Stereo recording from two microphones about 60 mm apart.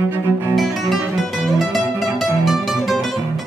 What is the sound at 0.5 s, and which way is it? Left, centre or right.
Music, centre.